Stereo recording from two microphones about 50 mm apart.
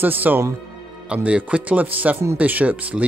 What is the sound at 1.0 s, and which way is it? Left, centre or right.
Speech, right.